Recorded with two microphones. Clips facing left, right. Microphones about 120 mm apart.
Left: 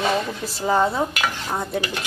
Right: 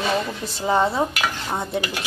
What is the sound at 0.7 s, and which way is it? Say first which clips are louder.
Speech: even; centre (ahead or behind).